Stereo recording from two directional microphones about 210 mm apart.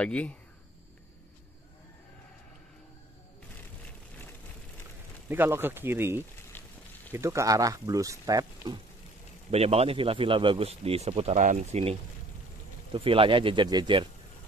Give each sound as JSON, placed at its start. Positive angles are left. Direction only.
{"t": 0.0, "sound": "speech", "side_deg": 5}
{"t": 5.3, "sound": "speech", "side_deg": -10}
{"t": 6.6, "sound": "a sound", "side_deg": 10}
{"t": 7.1, "sound": "speech", "side_deg": -15}
{"t": 9.5, "sound": "speech", "side_deg": -30}